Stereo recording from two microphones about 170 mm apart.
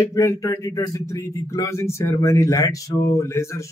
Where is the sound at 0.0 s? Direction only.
20° left (ahead or behind).